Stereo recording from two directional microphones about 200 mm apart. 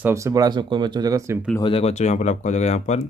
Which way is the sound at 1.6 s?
30° left (ahead or behind).